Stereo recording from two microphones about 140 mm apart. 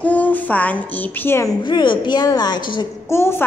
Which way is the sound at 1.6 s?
35° left (ahead or behind).